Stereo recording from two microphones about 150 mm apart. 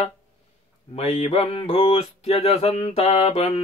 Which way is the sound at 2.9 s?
45° left (ahead or behind).